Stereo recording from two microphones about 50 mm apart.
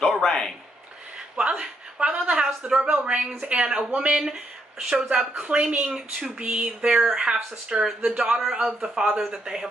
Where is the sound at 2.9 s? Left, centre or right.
Right.